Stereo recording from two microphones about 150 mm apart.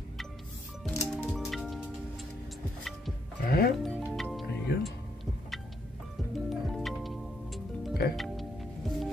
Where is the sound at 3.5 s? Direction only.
90° left.